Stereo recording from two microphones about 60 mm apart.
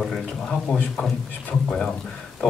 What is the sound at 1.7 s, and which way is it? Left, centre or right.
Speech, centre.